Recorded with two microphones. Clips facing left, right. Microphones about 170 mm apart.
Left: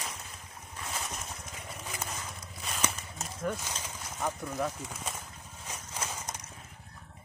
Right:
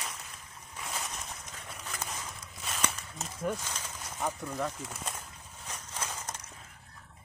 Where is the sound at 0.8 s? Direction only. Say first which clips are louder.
Even; 5° left (ahead or behind).